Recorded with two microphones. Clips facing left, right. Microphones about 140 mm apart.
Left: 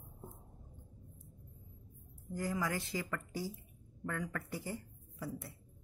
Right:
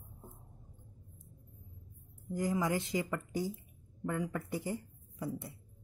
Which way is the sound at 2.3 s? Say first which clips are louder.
Right 4 dB; 20° right (ahead or behind).